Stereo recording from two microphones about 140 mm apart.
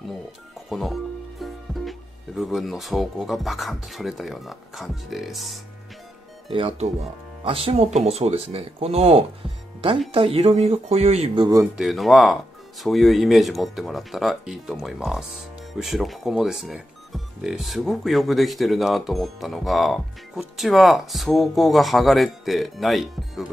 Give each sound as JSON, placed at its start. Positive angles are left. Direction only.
{"t": 0.6, "sound": "music", "side_deg": 0}
{"t": 1.4, "sound": "speech", "side_deg": 0}
{"t": 6.5, "sound": "speech", "side_deg": -45}
{"t": 11.3, "sound": "speech", "side_deg": -30}
{"t": 11.6, "sound": "speech", "side_deg": -5}